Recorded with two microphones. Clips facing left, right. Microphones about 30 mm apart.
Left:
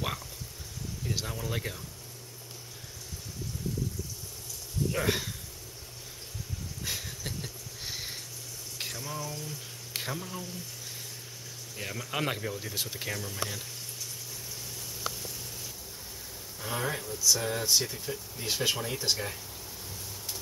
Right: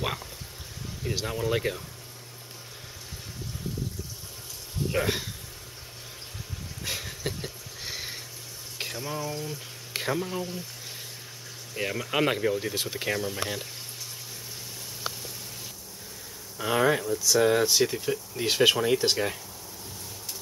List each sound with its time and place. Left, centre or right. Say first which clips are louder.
0.0 s speech: right 3 dB; centre
4.9 s speech: right 3 dB; centre
6.8 s a sound: right 5 dB; right
8.9 s speech: right 8 dB; right
16.5 s speech: right 10 dB; right
17.8 s speech: right 8 dB; right